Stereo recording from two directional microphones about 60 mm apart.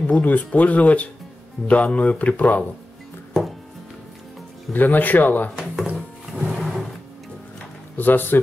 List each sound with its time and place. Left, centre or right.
0.2 s speech: left
4.7 s speech: left
5.6 s drawer open or close: centre
8.0 s speech: left